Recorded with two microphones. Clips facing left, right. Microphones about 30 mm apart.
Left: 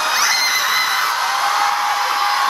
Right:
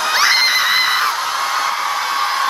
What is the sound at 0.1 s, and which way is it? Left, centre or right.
Music, right.